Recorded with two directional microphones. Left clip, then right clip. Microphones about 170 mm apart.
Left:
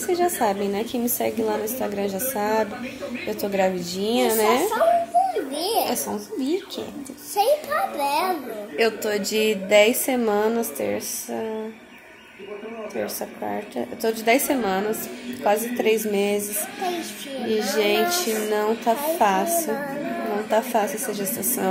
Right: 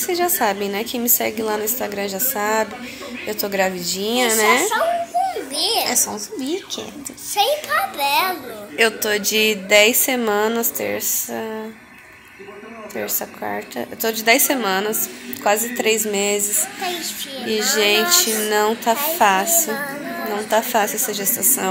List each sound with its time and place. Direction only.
0.0 s a woman's voice: centre (ahead or behind)
5.5 s a child's voice: 30° left (ahead or behind)
6.1 s a woman's voice: 10° left (ahead or behind)
7.7 s a child's voice: 35° left (ahead or behind)
8.7 s a woman's voice: 5° left (ahead or behind)
13.0 s a woman's voice: centre (ahead or behind)
17.5 s a woman's voice: centre (ahead or behind)